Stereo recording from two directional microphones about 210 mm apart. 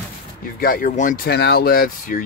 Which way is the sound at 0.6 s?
45° left (ahead or behind).